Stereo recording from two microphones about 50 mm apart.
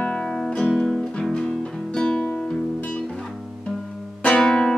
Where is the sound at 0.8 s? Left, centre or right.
Centre.